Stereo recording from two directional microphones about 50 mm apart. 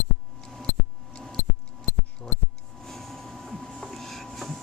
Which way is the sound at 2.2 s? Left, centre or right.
Centre.